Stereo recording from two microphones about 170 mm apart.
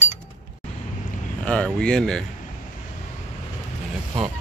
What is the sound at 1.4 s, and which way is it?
Speech, 5° left (ahead or behind).